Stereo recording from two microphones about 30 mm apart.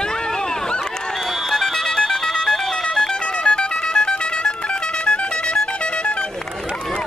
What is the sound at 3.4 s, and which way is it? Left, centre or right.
Music, left.